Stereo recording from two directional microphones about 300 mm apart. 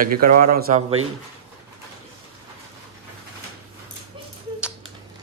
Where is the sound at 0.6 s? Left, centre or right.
Right.